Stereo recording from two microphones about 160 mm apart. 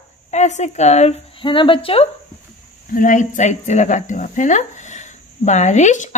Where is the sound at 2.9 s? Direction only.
55° left (ahead or behind).